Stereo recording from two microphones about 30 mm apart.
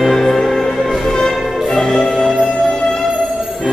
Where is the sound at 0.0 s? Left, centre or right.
Centre.